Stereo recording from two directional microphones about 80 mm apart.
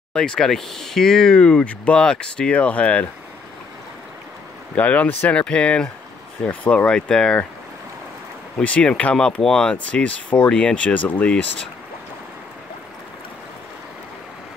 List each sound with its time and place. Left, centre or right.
0.1 s speech: centre
4.7 s speech: centre
8.5 s speech: centre